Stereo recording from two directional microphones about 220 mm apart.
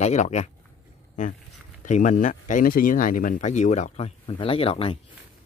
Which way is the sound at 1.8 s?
35° left (ahead or behind).